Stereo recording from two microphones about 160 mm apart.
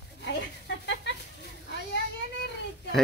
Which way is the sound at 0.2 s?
90° left.